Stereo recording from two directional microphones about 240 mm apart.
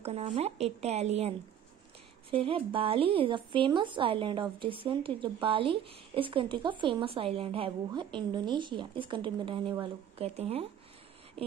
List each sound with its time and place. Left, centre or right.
0.0 s speech: right
2.3 s speech: right